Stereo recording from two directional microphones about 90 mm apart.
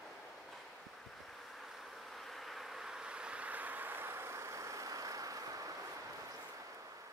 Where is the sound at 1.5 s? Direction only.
Centre (ahead or behind); by 5.7 s 40° right (ahead or behind).